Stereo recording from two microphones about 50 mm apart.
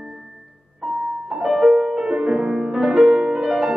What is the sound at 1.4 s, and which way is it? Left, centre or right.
Music, centre.